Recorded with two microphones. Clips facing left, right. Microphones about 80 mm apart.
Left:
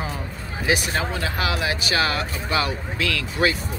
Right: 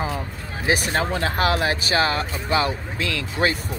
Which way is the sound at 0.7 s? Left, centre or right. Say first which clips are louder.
Right 2 dB; right.